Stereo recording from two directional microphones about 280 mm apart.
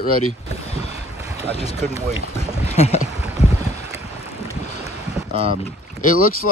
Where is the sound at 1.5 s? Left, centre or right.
Left.